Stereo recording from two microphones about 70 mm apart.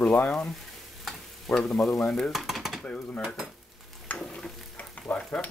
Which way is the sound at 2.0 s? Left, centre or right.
Centre.